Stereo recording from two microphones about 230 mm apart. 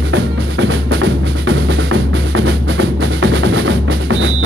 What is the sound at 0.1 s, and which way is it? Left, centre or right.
Drum, right.